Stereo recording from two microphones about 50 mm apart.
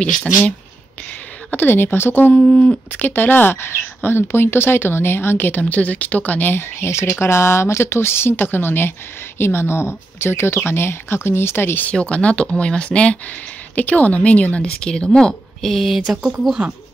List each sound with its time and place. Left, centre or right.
1.5 s speech: left
2.3 s speech: centre
2.9 s speech: left
11.9 s a woman's voice: left; by 16.0 s centre